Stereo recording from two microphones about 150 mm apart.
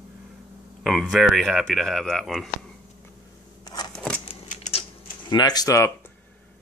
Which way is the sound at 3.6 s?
25° left (ahead or behind).